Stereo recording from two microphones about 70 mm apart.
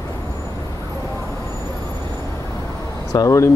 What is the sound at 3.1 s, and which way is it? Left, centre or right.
Speech, left.